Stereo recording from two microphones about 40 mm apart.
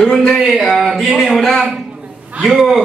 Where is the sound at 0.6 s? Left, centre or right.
Centre.